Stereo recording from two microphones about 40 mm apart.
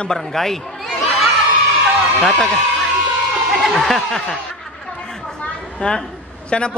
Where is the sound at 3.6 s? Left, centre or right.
Centre.